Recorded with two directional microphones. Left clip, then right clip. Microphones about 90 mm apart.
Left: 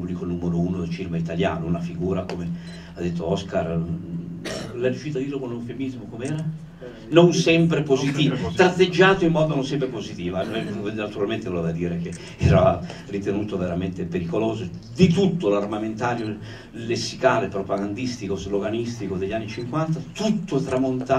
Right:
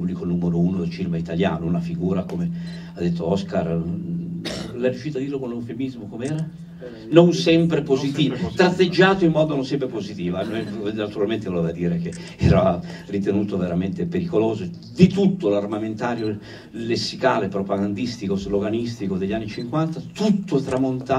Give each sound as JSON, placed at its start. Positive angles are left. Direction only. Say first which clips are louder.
{"t": 0.7, "sound": "a man's voice", "louder": "right 2 dB", "side_deg": 50}
{"t": 4.7, "sound": "a man's voice", "louder": "right 1 dB", "side_deg": 45}
{"t": 7.1, "sound": "a man's voice", "louder": "right 1 dB", "side_deg": 45}